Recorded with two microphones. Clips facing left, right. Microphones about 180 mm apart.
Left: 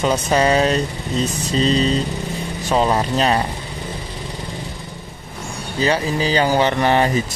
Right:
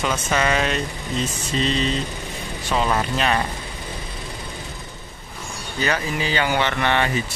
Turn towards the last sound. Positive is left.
turn(degrees=35)  # may be behind; listen again after turning